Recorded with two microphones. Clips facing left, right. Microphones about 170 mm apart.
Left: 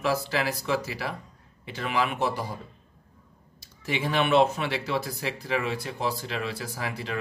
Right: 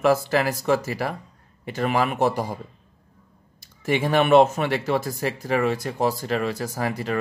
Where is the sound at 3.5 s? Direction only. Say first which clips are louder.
Right 7 dB; 50° right (ahead or behind).